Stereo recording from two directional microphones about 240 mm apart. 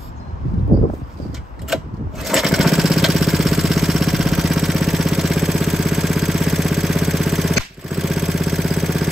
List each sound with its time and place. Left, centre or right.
2.2 s lawn mower: centre